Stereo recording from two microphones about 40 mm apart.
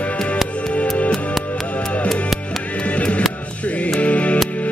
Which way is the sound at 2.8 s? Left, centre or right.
Left.